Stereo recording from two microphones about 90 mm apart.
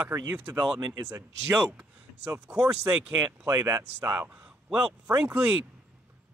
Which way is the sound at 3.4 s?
35° right (ahead or behind).